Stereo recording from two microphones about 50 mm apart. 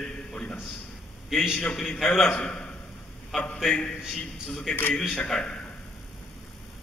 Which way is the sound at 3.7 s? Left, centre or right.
Centre.